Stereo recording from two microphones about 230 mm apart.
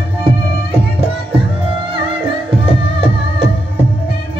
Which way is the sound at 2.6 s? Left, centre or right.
Right.